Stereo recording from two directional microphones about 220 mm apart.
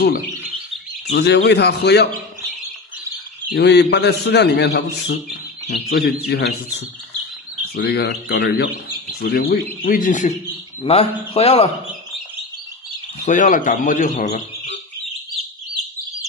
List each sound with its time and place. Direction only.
1.0 s a man's voice: 50° left (ahead or behind)
3.5 s a man's voice: 50° left (ahead or behind)
7.7 s a man's voice: 45° left (ahead or behind); by 11.7 s 25° left (ahead or behind)
13.2 s speech: 35° left (ahead or behind)